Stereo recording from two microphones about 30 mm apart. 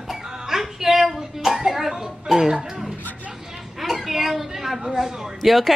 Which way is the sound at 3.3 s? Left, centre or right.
Centre.